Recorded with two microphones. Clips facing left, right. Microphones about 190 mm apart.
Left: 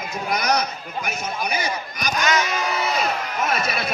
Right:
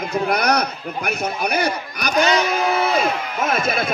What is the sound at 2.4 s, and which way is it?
Music, 55° right (ahead or behind).